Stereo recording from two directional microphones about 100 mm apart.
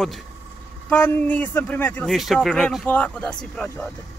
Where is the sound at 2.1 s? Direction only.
Centre (ahead or behind).